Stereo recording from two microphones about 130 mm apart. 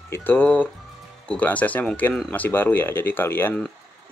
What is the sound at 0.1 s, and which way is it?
Speech, 15° left (ahead or behind).